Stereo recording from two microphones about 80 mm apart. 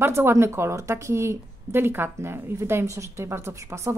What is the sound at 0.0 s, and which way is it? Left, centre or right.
A woman's voice, right.